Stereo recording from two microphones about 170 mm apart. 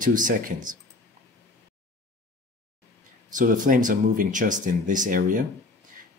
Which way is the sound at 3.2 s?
50° right (ahead or behind).